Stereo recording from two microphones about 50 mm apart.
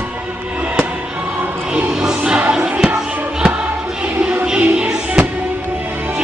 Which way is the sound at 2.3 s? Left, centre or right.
Right.